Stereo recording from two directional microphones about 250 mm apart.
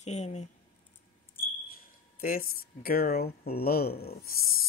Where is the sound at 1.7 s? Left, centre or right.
Left.